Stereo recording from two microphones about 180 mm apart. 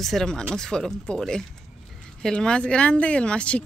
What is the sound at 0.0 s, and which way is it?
Speech, centre (ahead or behind).